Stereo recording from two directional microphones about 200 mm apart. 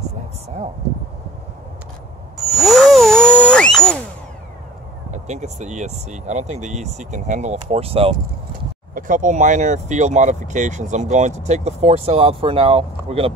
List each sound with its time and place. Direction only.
2.3 s a sound: centre (ahead or behind)
5.1 s speech: 35° right (ahead or behind)
8.9 s speech: 40° right (ahead or behind)